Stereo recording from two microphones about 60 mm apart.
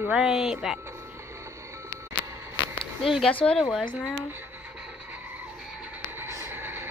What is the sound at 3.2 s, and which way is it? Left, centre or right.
Speech, centre.